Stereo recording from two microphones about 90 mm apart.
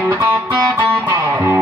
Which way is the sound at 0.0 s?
20° right (ahead or behind).